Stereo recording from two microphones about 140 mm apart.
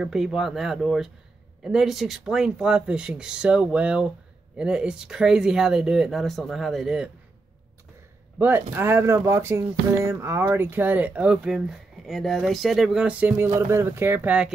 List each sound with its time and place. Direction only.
0.0 s speech: 5° right (ahead or behind)
8.4 s speech: 15° right (ahead or behind)